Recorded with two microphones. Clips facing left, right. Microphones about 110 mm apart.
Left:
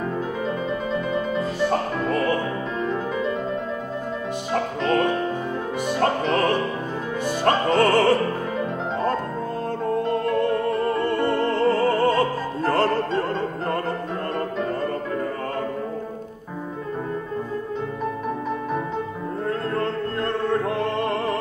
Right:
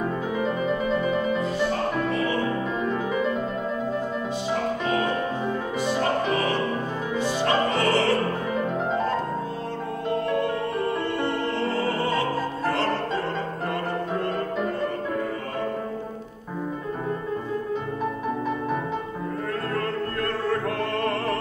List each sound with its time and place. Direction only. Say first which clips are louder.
1.7 s music: left 2 dB; 50° left (ahead or behind)
2.8 s music: left 2 dB; 5° right (ahead or behind)
7.2 s opera: left 3 dB; 45° left (ahead or behind)
11.1 s opera: left 4 dB; 45° left (ahead or behind)
19.7 s music: left 2 dB; 25° left (ahead or behind)